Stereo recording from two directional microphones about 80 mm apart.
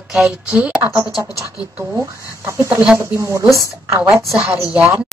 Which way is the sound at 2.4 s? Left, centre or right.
Right.